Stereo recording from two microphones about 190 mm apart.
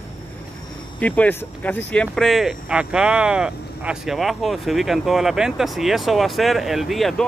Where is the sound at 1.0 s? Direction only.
5° left (ahead or behind).